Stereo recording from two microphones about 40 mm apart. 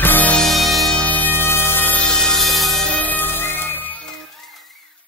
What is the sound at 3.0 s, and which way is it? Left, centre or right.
Music, left.